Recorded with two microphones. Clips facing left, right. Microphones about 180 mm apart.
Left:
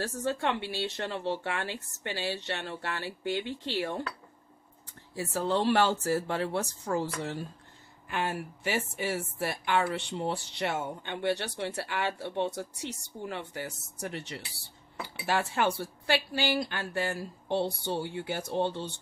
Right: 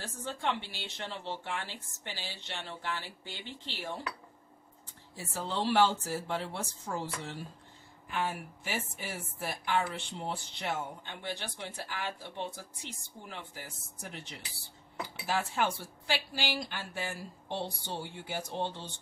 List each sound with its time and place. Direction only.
0.0 s speech: 70° left (ahead or behind)
5.1 s a woman's voice: 70° left (ahead or behind)